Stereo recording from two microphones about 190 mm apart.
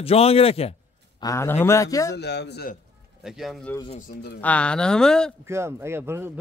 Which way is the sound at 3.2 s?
Centre (ahead or behind).